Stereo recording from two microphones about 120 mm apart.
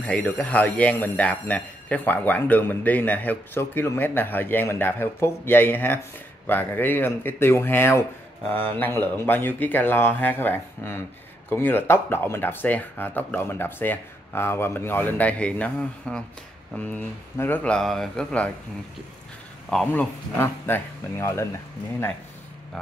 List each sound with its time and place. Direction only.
0.0 s speech: 10° left (ahead or behind)
19.9 s speech: 15° left (ahead or behind)